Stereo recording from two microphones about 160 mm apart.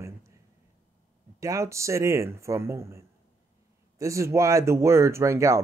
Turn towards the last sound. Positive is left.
turn(degrees=-20)  # may be behind; listen again after turning